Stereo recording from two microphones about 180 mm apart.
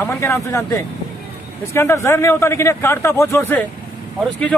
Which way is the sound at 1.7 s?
15° left (ahead or behind).